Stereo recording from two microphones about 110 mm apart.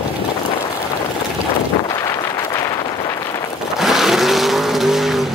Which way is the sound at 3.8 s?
5° right (ahead or behind).